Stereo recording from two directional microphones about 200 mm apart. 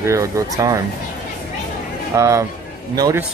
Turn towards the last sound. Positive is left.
turn(degrees=-20)  # may be behind; listen again after turning